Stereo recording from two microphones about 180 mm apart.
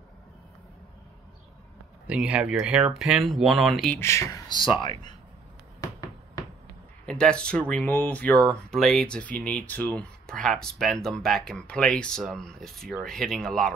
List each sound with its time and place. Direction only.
2.0 s speech: 5° right (ahead or behind)
4.0 s speech: 15° left (ahead or behind)
7.1 s speech: 5° left (ahead or behind)